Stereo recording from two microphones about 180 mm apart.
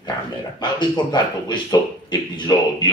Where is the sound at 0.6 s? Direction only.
25° left (ahead or behind).